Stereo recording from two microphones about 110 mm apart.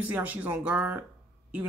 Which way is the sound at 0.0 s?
15° right (ahead or behind).